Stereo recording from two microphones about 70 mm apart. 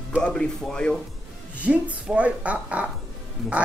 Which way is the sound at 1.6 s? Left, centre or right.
Centre.